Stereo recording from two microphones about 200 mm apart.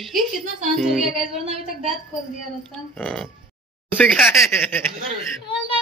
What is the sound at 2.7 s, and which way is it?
A man's voice, centre (ahead or behind).